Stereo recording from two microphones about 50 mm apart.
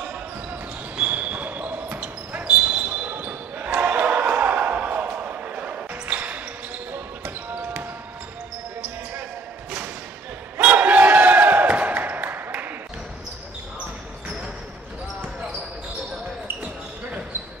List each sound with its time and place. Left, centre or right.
0.9 s basketball bounce: right
10.6 s crowd: right
12.4 s a sound: right